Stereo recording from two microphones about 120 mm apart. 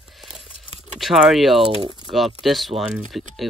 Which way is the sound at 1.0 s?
Centre (ahead or behind).